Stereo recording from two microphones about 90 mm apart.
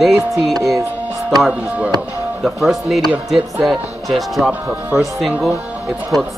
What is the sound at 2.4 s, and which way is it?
Speech, centre (ahead or behind).